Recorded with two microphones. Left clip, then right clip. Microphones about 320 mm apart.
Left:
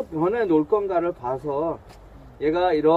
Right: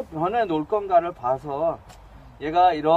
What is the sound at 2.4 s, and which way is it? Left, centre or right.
Snicker, centre.